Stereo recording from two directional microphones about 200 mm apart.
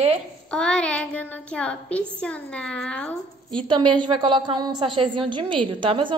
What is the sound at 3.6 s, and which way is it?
A woman's voice, 25° right (ahead or behind).